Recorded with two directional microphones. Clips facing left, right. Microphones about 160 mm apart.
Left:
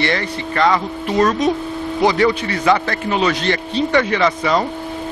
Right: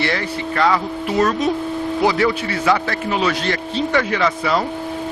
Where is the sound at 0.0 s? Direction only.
5° right (ahead or behind).